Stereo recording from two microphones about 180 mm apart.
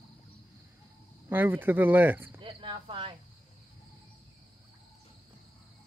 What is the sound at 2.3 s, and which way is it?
Cricket, 30° right (ahead or behind).